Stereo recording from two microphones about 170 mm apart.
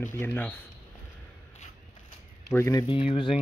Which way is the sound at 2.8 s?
30° left (ahead or behind).